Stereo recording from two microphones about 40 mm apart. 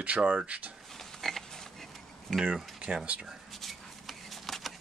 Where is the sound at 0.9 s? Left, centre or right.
Centre.